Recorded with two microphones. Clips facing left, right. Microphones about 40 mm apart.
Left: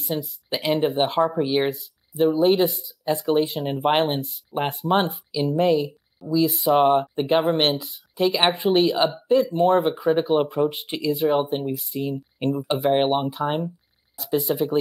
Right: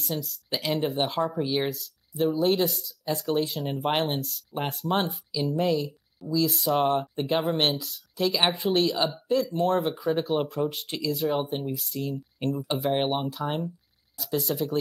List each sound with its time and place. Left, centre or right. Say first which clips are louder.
0.0 s speech: left 4 dB; left
1.0 s speech: left 6 dB; centre
1.3 s speech: left 5 dB; left